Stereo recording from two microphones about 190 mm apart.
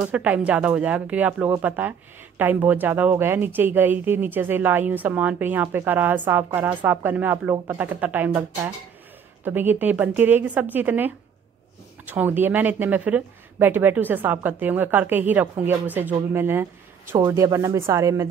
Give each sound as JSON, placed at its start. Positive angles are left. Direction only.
{"t": 0.0, "sound": "speech", "side_deg": -5}